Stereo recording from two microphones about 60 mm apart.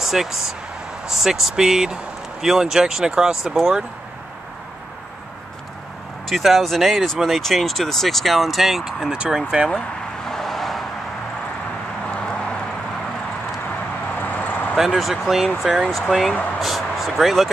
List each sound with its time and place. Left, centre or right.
0.0 s speech: centre
6.2 s speech: centre
9.7 s vehicle: centre
12.1 s a sound: centre
13.7 s a sound: left
15.0 s speech: centre